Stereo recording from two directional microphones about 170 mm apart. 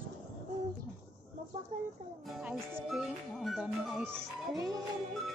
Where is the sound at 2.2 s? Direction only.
Centre (ahead or behind).